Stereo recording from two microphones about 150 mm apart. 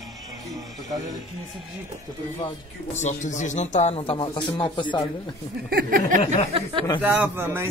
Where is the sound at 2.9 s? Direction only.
50° left (ahead or behind); by 5.0 s 35° left (ahead or behind).